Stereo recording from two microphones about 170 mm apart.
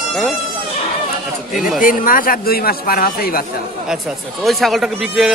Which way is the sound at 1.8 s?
55° left (ahead or behind).